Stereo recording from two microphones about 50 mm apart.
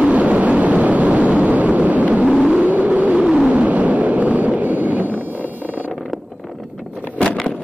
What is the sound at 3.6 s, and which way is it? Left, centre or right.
Vehicle, right.